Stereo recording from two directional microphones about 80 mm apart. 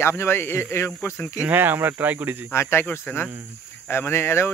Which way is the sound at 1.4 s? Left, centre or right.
Right.